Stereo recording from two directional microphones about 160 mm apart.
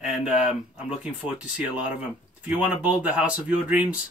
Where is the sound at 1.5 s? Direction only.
10° right (ahead or behind).